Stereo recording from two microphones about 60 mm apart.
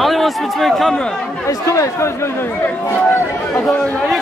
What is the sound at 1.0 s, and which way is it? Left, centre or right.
Speech, centre.